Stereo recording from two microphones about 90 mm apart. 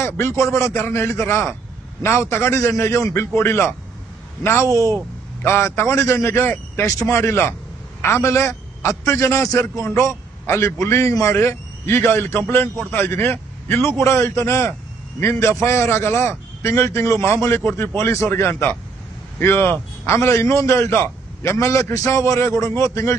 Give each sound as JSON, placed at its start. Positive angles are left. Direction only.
{"t": 0.0, "sound": "a man's voice", "side_deg": 30}